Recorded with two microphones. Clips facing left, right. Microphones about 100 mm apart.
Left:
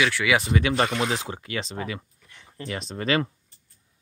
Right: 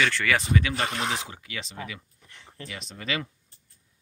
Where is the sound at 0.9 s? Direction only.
35° left (ahead or behind).